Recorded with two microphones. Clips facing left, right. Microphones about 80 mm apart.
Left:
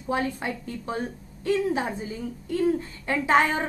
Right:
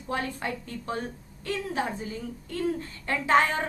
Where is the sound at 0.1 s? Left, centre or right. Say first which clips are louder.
Left 4 dB; centre.